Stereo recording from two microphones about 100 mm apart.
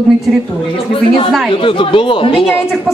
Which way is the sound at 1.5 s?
60° left (ahead or behind).